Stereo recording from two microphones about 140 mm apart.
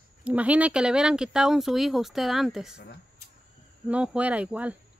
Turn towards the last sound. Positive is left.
turn(degrees=-10)  # may be behind; listen again after turning